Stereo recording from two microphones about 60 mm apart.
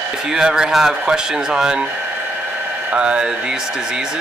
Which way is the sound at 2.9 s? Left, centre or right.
Centre.